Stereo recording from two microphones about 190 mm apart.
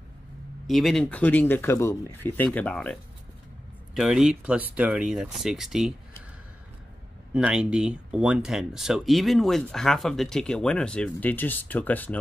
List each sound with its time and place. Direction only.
0.7 s speech: centre (ahead or behind)
7.3 s speech: 5° right (ahead or behind)